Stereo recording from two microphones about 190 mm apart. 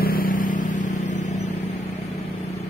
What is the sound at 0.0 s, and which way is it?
Vehicle, 50° left (ahead or behind).